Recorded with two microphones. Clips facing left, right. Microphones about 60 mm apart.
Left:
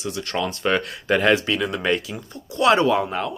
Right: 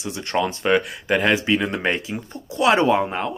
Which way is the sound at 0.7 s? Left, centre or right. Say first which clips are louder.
Right 2 dB; centre.